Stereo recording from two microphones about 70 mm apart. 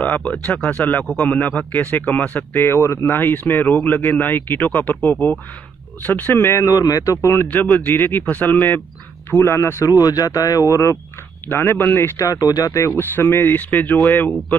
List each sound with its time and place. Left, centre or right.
0.0 s speech: centre
1.0 s a man's voice: centre
1.7 s speech: left
6.6 s speech: left
7.5 s speech: left
9.8 s speech: left
11.4 s speech: left
12.2 s speech: left
13.1 s speech: left